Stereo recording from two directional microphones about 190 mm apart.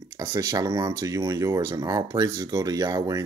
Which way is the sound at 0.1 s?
15° right (ahead or behind).